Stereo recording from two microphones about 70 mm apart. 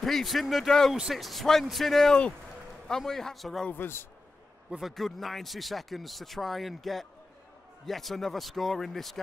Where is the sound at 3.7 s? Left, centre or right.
Left.